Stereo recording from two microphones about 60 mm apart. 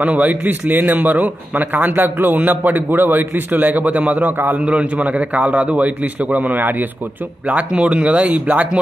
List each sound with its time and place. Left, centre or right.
0.0 s speech: right